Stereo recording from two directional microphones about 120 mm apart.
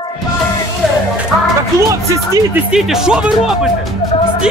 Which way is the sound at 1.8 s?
25° right (ahead or behind).